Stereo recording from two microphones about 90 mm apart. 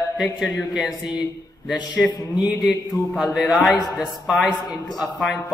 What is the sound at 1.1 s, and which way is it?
Speech, 5° right (ahead or behind).